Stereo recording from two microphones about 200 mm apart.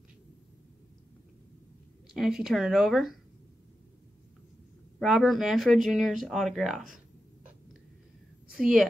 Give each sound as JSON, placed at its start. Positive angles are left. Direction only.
{"t": 2.1, "sound": "speech", "side_deg": 0}
{"t": 4.9, "sound": "speech", "side_deg": 0}
{"t": 8.5, "sound": "a woman's voice", "side_deg": -5}